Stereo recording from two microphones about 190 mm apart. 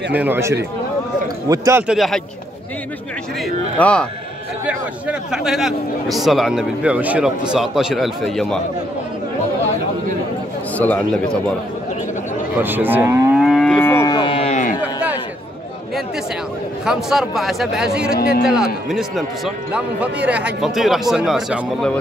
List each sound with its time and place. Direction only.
0.1 s cattle: 10° right (ahead or behind)
2.0 s a man's voice: centre (ahead or behind)
3.4 s a man's voice: 5° left (ahead or behind)
4.6 s a man's voice: 5° right (ahead or behind)
10.8 s speech: 10° left (ahead or behind)
12.5 s cattle: 10° right (ahead or behind)
13.4 s livestock: centre (ahead or behind)
13.7 s music: 15° left (ahead or behind); by 14.6 s 30° left (ahead or behind)
16.8 s a man's voice: 5° right (ahead or behind)
18.1 s a man's voice: 50° left (ahead or behind)
18.5 s a man's voice: 5° right (ahead or behind)